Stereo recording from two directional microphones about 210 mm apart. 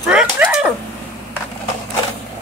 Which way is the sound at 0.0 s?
5° right (ahead or behind).